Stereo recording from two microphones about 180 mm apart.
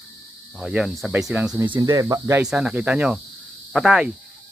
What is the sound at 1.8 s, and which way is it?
Cricket, 20° right (ahead or behind).